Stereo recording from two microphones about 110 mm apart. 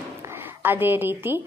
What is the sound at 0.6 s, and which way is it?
Speech, 20° right (ahead or behind).